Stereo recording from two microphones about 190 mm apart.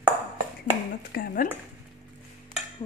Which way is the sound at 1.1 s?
50° left (ahead or behind).